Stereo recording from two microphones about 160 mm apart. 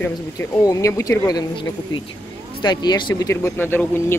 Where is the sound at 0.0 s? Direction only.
15° left (ahead or behind).